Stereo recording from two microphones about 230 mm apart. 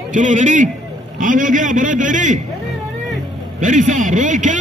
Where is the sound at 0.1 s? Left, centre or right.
Right.